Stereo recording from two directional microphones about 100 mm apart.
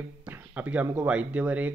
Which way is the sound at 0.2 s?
15° right (ahead or behind).